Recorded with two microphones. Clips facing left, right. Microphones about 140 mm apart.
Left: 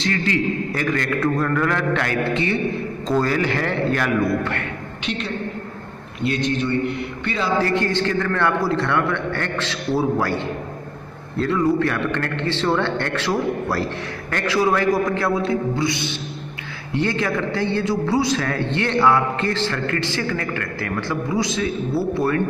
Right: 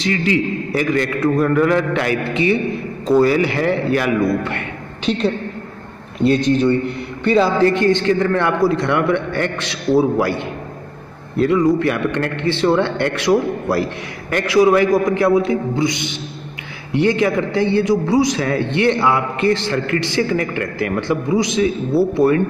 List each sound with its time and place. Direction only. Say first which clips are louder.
0.0 s a man's voice: right 3 dB; 15° right (ahead or behind)
5.0 s a man's voice: right 8 dB; 35° right (ahead or behind)
7.6 s a man's voice: right 6 dB; 20° right (ahead or behind)